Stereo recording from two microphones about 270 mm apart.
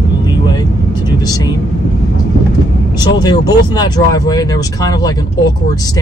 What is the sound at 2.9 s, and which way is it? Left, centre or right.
Speech, centre.